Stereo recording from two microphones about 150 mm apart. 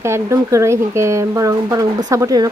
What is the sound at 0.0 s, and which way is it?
A woman's voice, 20° right (ahead or behind).